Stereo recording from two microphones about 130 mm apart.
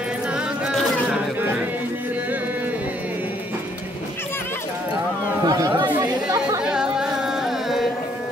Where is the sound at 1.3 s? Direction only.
15° right (ahead or behind).